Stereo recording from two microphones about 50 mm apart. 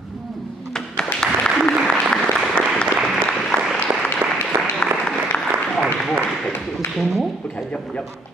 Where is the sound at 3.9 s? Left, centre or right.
Right.